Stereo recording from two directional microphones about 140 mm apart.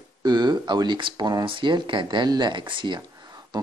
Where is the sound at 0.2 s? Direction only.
30° right (ahead or behind).